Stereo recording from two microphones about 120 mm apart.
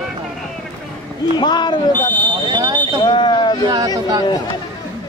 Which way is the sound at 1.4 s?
40° left (ahead or behind).